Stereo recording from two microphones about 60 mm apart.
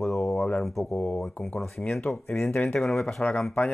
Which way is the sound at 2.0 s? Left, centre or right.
Left.